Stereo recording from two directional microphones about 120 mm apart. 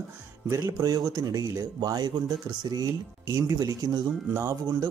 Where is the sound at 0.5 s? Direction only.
30° right (ahead or behind).